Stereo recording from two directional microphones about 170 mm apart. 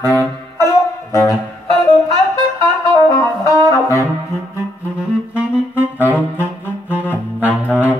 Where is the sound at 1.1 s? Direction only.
15° left (ahead or behind).